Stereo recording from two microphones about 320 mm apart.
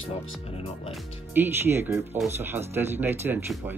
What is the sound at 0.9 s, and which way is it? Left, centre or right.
Speech, centre.